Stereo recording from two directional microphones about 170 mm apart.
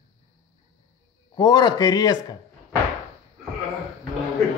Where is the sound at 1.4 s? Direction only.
25° left (ahead or behind).